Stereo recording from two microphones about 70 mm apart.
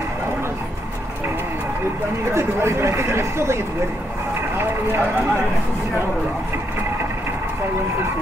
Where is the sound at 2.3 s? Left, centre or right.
Right.